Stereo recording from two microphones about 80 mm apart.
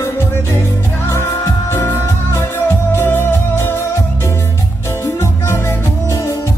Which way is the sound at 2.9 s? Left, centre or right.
Left.